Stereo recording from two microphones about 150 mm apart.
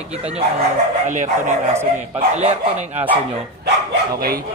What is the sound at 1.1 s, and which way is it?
Speech, 55° right (ahead or behind).